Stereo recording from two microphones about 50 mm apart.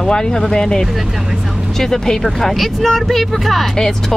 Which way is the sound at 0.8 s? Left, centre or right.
Centre.